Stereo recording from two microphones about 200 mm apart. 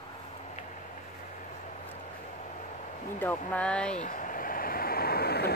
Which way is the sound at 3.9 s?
40° left (ahead or behind).